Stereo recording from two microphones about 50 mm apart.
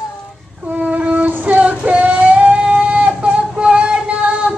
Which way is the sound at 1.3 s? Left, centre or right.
Right.